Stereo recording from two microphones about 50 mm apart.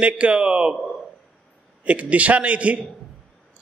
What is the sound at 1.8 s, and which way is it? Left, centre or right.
Speech, right.